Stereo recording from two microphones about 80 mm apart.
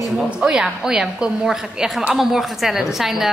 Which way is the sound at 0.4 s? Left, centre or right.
Centre.